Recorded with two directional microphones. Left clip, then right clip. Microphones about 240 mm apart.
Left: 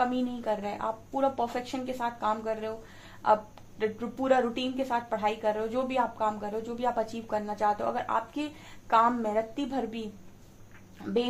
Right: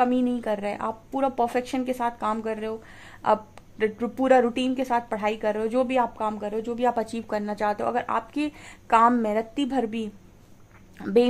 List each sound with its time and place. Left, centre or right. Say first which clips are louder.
0.0 s a woman's voice: right 6 dB; right